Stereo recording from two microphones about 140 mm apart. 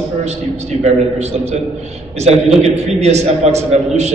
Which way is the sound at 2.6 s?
50° right (ahead or behind).